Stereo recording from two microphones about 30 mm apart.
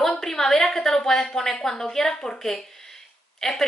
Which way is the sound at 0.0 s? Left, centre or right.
Centre.